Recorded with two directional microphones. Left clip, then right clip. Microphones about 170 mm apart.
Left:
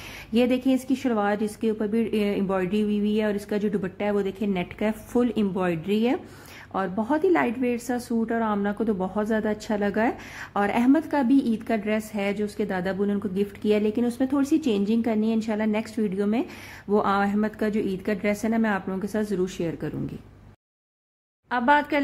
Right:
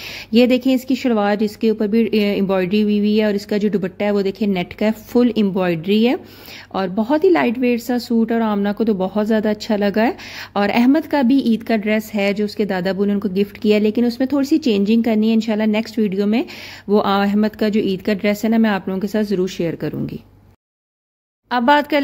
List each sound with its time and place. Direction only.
0.3 s a woman's voice: 35° right (ahead or behind)
21.5 s a woman's voice: 40° right (ahead or behind)